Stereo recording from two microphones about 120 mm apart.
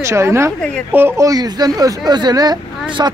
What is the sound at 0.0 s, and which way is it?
A woman's voice, 25° right (ahead or behind).